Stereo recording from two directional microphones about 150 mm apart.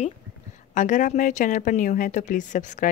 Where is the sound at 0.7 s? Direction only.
60° left (ahead or behind).